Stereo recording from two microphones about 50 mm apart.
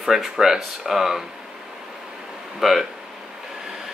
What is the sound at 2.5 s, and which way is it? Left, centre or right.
Speech, centre.